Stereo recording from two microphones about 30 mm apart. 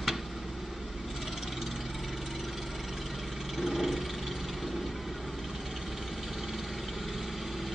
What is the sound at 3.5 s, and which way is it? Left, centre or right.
Vehicle, centre.